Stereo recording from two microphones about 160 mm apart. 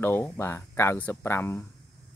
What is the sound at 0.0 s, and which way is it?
Speech, 15° left (ahead or behind).